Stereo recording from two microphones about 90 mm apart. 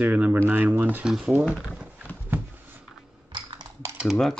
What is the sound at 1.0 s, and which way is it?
Speech, 10° right (ahead or behind).